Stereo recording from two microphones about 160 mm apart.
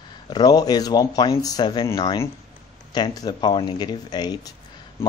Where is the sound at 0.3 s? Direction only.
25° left (ahead or behind).